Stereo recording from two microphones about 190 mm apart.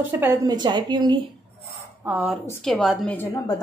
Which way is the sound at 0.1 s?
10° right (ahead or behind).